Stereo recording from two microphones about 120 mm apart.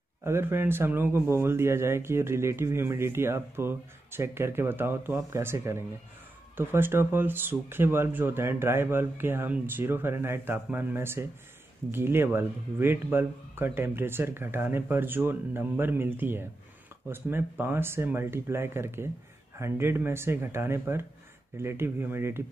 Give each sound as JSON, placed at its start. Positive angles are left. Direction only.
{"t": 0.2, "sound": "speech", "side_deg": -20}